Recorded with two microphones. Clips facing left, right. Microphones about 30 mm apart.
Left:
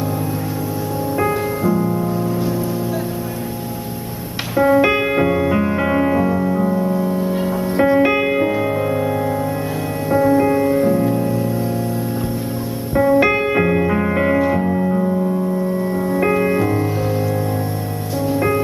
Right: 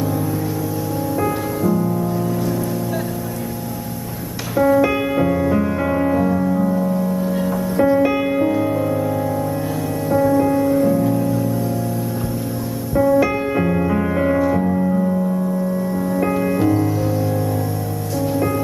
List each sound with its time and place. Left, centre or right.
1.6 s music: left
2.1 s music: left
4.6 s music: left
10.1 s music: left
12.9 s music: left
15.9 s music: left